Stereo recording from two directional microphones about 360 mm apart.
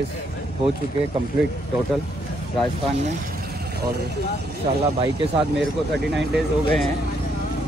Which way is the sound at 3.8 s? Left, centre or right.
Right.